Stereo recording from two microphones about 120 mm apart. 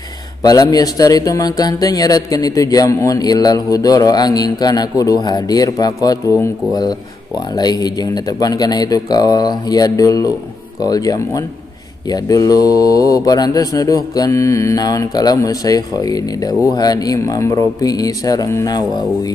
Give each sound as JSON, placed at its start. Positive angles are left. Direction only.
{"t": 0.4, "sound": "a man's voice", "side_deg": 30}